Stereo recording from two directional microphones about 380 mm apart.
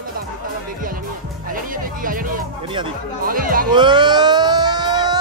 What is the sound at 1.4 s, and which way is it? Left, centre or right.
Speech, right.